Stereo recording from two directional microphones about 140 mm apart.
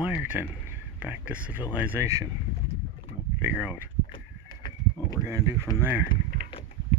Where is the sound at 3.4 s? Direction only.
10° right (ahead or behind).